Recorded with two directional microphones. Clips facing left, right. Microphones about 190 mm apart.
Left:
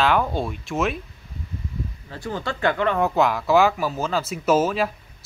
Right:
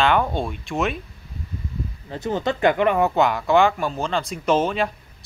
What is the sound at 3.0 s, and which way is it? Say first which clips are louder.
Speech: right 1 dB; centre (ahead or behind).